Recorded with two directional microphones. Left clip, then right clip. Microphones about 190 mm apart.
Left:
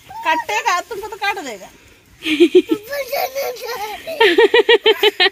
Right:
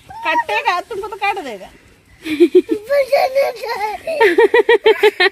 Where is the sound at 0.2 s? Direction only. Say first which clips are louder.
Right 1 dB; 25° right (ahead or behind).